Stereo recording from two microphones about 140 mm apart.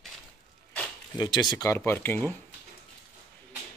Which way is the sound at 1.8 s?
15° left (ahead or behind).